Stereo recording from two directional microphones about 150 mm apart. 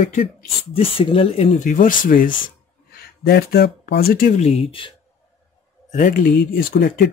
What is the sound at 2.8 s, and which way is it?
Speech, 90° left.